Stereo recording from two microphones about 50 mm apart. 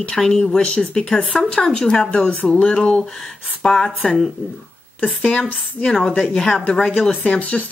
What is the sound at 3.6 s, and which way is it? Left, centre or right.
Speech, centre.